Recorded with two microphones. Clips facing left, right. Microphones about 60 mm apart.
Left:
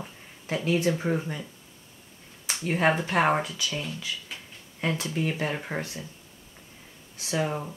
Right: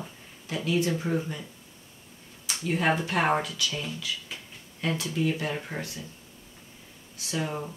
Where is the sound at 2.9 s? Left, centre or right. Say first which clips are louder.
Left 2 dB; left.